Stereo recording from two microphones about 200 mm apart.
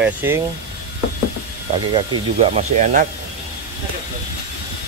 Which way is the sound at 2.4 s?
35° right (ahead or behind).